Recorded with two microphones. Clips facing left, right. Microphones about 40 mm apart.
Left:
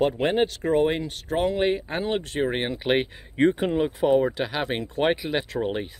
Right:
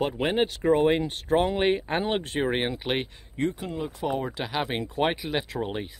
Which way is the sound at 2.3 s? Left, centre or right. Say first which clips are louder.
Left 1 dB; centre.